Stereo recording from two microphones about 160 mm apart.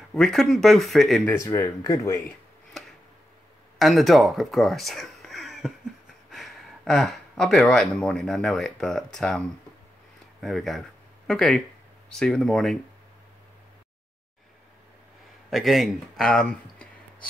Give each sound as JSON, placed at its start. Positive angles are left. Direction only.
{"t": 0.1, "sound": "speech", "side_deg": 0}
{"t": 1.3, "sound": "speech", "side_deg": 15}
{"t": 3.7, "sound": "speech", "side_deg": 0}
{"t": 10.4, "sound": "speech", "side_deg": 0}
{"t": 15.5, "sound": "speech", "side_deg": 0}